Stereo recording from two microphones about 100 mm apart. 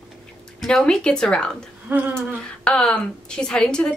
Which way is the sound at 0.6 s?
5° left (ahead or behind).